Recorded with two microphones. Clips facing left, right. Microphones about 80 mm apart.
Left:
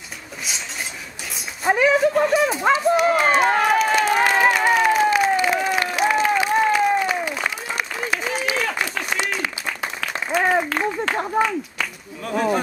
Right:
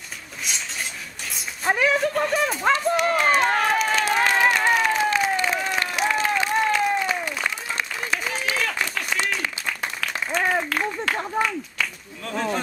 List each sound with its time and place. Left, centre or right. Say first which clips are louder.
0.5 s a sound: even; centre
1.3 s speech: left 4 dB; centre
4.1 s applause: left 2 dB; centre
9.8 s applause: left 2 dB; centre
12.2 s speech: left 5 dB; centre